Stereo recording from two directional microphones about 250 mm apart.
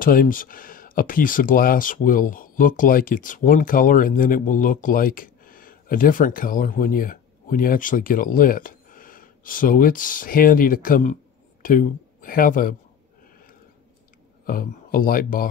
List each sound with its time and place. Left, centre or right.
0.0 s speech: left
14.4 s speech: left